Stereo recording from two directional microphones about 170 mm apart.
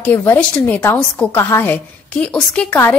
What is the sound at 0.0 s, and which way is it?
A woman's voice, 10° left (ahead or behind).